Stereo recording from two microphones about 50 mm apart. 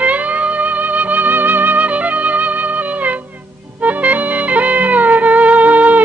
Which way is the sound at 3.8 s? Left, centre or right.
Right.